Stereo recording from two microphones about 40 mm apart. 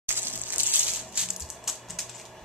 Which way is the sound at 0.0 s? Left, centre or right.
Right.